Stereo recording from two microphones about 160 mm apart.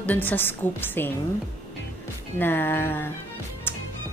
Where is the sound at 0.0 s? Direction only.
10° left (ahead or behind).